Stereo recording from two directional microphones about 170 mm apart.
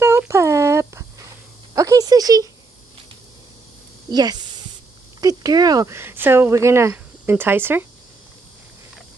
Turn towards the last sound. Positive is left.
turn(degrees=-10)  # may be behind; listen again after turning